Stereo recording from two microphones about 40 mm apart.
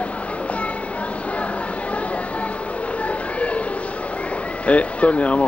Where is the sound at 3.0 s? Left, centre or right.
Left.